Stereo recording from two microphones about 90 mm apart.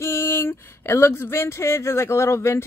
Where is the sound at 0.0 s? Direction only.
30° left (ahead or behind).